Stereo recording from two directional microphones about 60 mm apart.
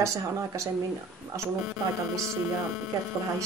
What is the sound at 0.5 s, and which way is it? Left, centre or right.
Speech, right.